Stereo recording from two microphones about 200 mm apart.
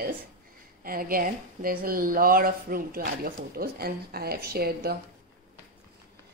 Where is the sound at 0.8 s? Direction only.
45° right (ahead or behind).